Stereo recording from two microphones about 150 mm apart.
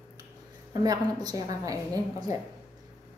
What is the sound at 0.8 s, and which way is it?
Speech, 25° right (ahead or behind).